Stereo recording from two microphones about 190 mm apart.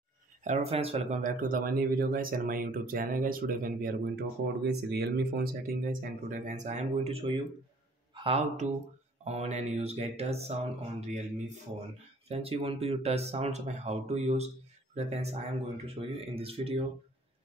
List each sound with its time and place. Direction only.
0.4 s speech: 35° right (ahead or behind)